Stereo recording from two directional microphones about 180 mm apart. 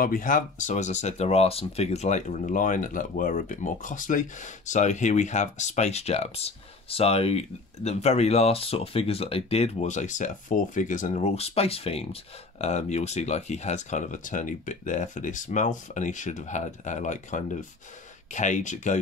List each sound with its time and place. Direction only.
0.0 s speech: 50° left (ahead or behind)